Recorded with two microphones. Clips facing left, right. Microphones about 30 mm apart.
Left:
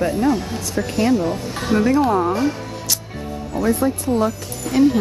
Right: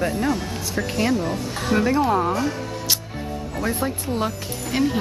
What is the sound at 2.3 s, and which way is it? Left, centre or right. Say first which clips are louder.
Speech: left 3 dB; centre.